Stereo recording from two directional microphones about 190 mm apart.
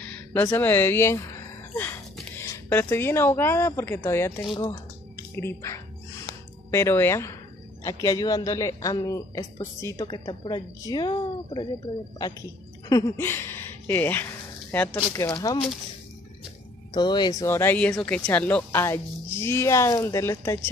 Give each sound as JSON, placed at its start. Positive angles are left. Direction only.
{"t": 0.0, "sound": "a sound", "side_deg": 10}
{"t": 2.3, "sound": "a woman's voice", "side_deg": 10}
{"t": 16.9, "sound": "a woman's voice", "side_deg": 20}